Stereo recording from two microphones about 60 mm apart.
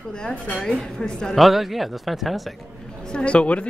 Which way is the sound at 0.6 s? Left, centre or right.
Centre.